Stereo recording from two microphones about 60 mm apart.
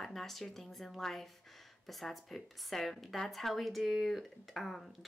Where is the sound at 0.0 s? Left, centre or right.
Centre.